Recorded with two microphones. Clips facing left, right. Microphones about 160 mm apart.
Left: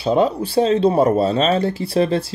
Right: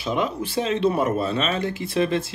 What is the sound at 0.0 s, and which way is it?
Speech, 30° left (ahead or behind).